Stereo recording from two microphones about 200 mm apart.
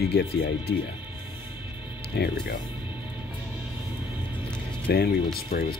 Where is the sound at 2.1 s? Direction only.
55° left (ahead or behind).